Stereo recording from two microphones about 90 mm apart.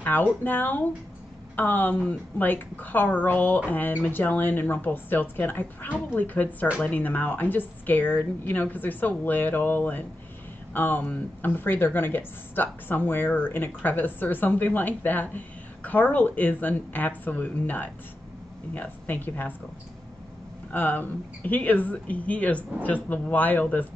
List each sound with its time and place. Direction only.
0.0 s speech: 20° left (ahead or behind)
20.7 s speech: 20° left (ahead or behind)